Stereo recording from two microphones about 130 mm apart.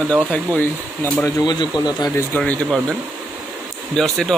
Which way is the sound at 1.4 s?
35° left (ahead or behind).